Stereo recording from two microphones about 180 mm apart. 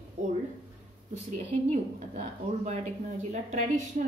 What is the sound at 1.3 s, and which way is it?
A woman's voice, 35° right (ahead or behind).